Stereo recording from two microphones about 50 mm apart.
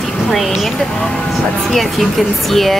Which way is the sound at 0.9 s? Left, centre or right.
Centre.